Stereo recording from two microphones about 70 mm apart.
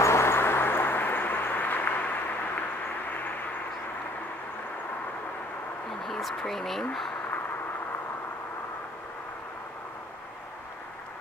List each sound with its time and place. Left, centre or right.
0.0 s vehicle: left
6.0 s speech: centre